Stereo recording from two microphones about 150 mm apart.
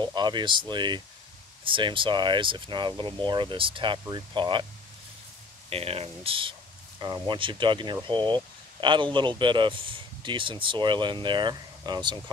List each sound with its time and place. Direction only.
0.0 s speech: 30° right (ahead or behind)
5.7 s speech: 40° right (ahead or behind)